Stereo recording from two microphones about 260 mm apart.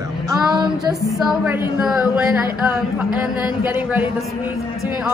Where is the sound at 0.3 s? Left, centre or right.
Centre.